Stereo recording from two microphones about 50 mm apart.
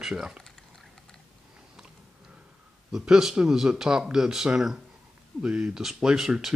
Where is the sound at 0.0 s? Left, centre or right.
Centre.